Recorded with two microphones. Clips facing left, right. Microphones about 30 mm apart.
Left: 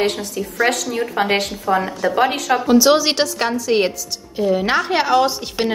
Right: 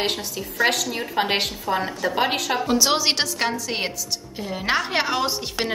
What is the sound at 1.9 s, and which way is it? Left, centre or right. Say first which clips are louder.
A woman's voice: left 5 dB; centre.